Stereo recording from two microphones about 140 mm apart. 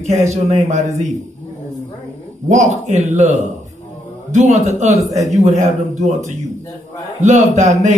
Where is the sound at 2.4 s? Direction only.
55° right (ahead or behind).